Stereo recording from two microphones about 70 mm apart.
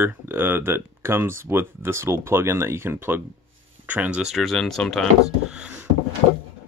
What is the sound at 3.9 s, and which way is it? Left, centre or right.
Speech, centre.